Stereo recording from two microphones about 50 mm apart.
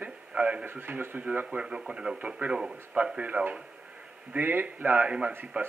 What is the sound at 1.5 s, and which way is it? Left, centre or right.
Speech, right.